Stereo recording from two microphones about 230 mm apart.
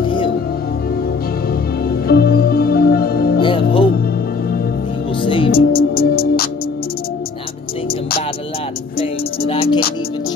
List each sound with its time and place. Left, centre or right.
1.9 s music: left
3.3 s music: left
5.2 s music: left
5.7 s music: left
8.9 s music: left